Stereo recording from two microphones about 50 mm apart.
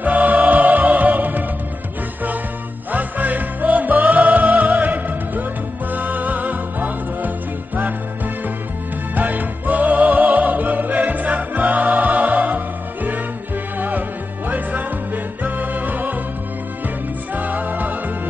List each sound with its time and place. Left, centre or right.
0.0 s music: right
2.9 s music: right
9.1 s music: right